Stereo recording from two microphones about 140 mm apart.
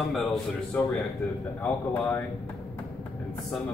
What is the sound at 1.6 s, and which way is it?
Speech, 15° left (ahead or behind).